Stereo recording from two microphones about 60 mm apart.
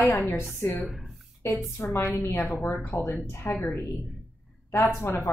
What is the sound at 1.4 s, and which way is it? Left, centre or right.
A woman's voice, left.